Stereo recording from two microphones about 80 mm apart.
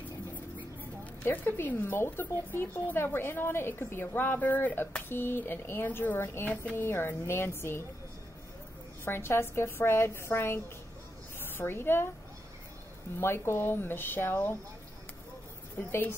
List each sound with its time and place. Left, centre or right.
1.2 s speech: left
9.0 s a woman's voice: left
13.2 s speech: left
15.9 s speech: left